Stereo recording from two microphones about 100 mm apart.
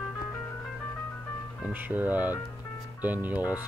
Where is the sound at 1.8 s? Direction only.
20° right (ahead or behind).